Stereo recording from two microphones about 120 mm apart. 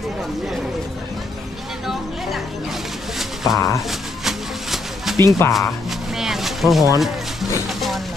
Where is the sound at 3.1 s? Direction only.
Centre (ahead or behind).